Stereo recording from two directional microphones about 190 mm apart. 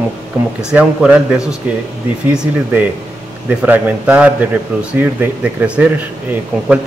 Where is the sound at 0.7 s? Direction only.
5° right (ahead or behind).